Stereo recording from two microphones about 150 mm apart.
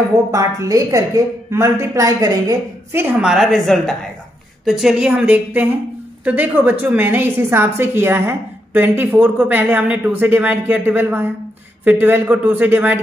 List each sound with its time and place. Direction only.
0.3 s a woman's voice: 20° right (ahead or behind)